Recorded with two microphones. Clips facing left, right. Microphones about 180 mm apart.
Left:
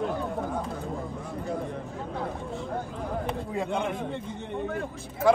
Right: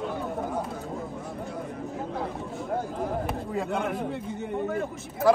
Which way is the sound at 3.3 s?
5° right (ahead or behind).